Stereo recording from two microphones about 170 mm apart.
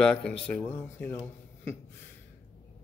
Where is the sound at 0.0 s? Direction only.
5° left (ahead or behind).